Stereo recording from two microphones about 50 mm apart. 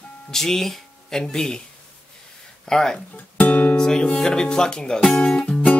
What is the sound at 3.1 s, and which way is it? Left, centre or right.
Music, left.